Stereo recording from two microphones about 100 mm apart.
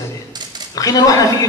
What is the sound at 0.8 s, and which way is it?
Speech, 35° left (ahead or behind).